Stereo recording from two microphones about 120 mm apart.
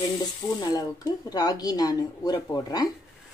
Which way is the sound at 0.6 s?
35° left (ahead or behind).